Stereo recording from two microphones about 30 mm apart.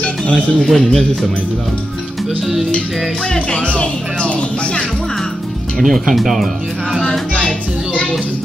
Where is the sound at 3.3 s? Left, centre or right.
Left.